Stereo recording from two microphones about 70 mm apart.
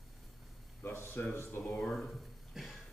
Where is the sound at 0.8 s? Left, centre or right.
Left.